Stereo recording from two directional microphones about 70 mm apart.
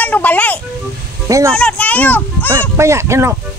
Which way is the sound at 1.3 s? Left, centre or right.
Right.